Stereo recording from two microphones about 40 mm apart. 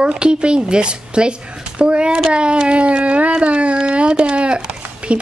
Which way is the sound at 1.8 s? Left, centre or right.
Right.